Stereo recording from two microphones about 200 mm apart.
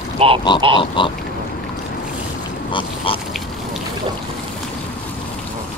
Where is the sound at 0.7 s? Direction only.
25° left (ahead or behind).